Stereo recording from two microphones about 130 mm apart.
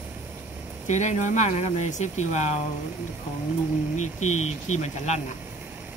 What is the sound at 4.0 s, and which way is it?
Speech, 65° left (ahead or behind).